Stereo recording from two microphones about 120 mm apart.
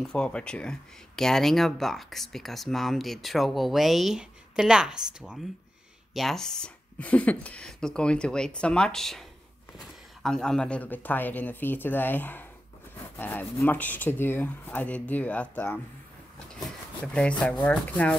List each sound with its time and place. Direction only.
0.0 s speech: 5° left (ahead or behind)